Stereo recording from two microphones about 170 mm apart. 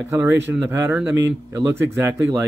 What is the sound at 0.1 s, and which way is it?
Speech, 15° right (ahead or behind).